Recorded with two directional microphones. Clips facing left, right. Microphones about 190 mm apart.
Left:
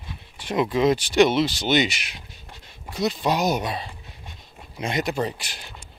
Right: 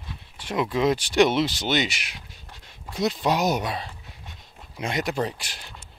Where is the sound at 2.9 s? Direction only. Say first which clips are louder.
Even; centre (ahead or behind).